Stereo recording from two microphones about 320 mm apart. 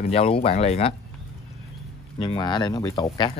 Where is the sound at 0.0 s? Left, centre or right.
Centre.